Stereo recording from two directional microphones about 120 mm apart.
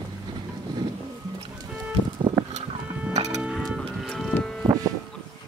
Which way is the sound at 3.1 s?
70° right (ahead or behind).